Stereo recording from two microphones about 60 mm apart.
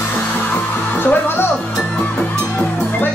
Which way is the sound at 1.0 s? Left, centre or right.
Left.